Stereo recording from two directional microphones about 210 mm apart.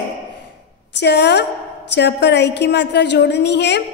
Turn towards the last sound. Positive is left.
turn(degrees=55)  # may be behind; listen again after turning